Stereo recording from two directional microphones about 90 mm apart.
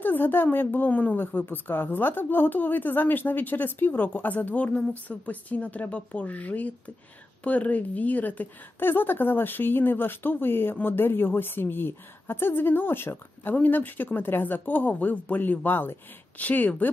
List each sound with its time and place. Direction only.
0.0 s a woman's voice: 20° left (ahead or behind)